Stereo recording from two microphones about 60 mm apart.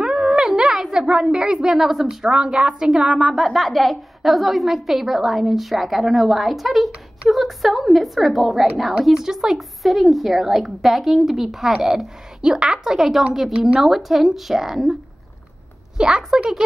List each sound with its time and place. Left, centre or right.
0.0 s a sound: centre
2.2 s a woman's voice: centre
16.0 s a woman's voice: centre